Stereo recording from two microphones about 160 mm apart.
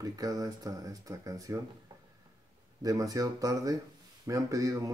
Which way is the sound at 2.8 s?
20° right (ahead or behind).